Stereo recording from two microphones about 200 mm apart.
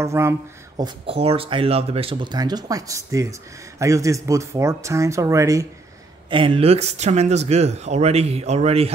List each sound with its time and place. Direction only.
0.0 s speech: 15° right (ahead or behind)
6.3 s speech: 25° right (ahead or behind)